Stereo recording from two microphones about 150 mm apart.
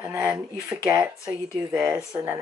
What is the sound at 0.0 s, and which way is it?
Speech, 15° right (ahead or behind).